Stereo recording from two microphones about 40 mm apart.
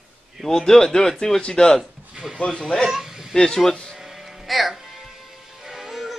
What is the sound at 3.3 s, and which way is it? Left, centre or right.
Speech, centre.